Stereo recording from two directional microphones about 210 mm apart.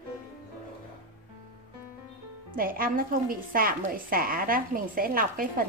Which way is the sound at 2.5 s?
40° right (ahead or behind).